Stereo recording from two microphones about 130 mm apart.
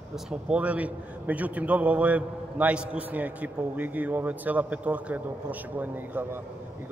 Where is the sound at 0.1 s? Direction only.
10° right (ahead or behind).